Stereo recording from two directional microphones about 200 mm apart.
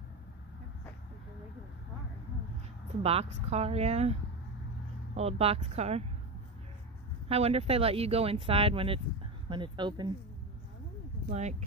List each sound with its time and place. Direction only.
3.0 s speech: 30° right (ahead or behind)
7.2 s speech: 30° right (ahead or behind)
11.2 s speech: 35° right (ahead or behind)